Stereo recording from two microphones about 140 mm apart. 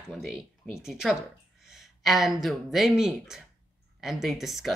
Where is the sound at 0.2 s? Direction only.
5° right (ahead or behind).